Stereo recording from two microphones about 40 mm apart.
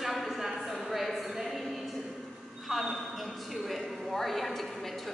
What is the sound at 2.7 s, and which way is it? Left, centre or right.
A man's voice, centre.